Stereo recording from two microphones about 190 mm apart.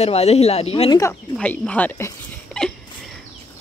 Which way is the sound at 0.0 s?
35° left (ahead or behind).